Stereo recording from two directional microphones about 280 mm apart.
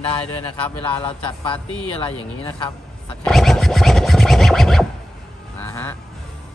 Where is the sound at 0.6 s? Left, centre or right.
Centre.